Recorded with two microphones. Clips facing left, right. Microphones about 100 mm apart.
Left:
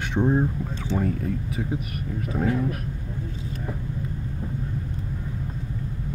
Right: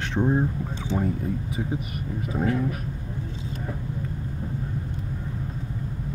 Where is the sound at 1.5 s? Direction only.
Centre (ahead or behind).